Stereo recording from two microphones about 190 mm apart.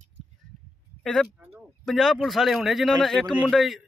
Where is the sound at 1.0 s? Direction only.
Centre (ahead or behind).